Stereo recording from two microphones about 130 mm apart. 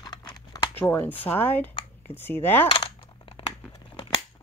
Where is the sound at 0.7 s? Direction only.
15° left (ahead or behind).